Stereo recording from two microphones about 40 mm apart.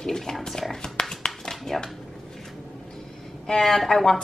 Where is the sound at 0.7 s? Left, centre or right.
Centre.